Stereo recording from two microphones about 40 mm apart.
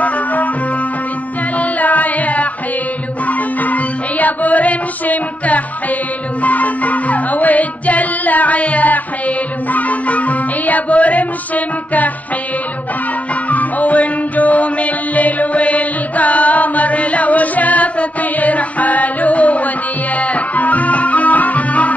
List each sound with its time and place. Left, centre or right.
1.6 s music: left
13.5 s music: left